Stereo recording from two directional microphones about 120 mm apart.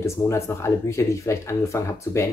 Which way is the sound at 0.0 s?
20° left (ahead or behind).